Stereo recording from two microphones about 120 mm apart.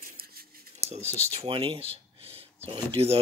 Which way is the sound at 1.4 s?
45° right (ahead or behind).